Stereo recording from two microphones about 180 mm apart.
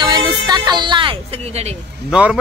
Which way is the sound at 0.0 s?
25° right (ahead or behind).